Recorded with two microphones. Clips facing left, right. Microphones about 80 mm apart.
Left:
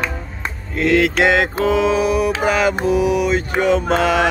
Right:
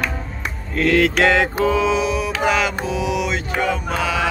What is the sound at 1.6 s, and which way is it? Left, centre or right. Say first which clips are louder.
Mantra: left 2 dB; left.